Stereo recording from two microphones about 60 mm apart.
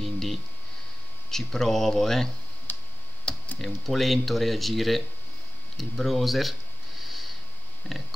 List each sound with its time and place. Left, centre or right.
0.0 s a sound: centre
1.3 s speech: centre
2.7 s tick-tock: left
3.5 s speech: centre
7.0 s snort: centre
7.8 s a sound: left